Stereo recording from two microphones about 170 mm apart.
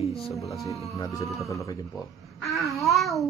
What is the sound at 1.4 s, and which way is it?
Speech, 20° left (ahead or behind).